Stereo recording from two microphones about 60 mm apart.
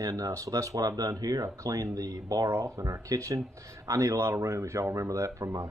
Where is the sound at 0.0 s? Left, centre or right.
Right.